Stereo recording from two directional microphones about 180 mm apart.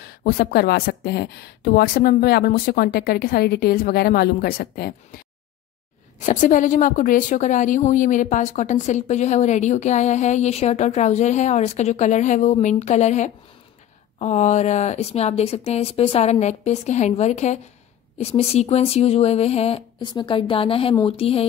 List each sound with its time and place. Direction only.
0.0 s speech: 55° left (ahead or behind)
6.1 s a woman's voice: 45° left (ahead or behind)